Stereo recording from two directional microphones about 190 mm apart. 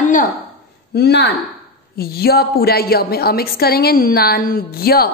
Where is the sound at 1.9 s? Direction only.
55° left (ahead or behind).